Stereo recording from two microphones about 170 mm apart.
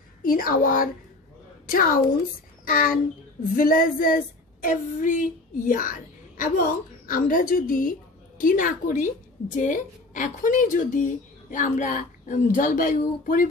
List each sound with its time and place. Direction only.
0.2 s female singing: 55° left (ahead or behind)
2.6 s speech: 55° left (ahead or behind)
3.5 s female singing: 55° left (ahead or behind)
4.6 s a woman's voice: 50° left (ahead or behind)